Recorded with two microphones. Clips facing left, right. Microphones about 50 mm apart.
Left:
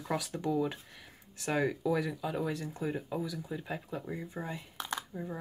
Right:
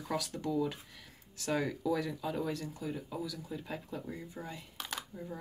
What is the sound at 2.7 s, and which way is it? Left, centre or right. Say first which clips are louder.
Speech: left 4 dB; left.